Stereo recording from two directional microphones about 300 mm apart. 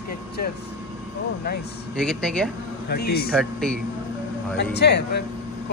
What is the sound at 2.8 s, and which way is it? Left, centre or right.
Speech, left.